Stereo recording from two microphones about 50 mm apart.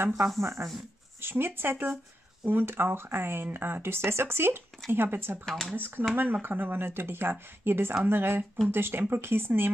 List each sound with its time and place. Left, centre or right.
0.1 s speech: centre
0.4 s speech: right
1.2 s speech: right
5.4 s speech: centre
5.8 s speech: right